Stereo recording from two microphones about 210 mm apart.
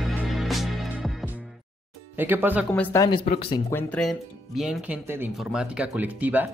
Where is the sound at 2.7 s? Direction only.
10° left (ahead or behind); by 3.6 s 25° left (ahead or behind).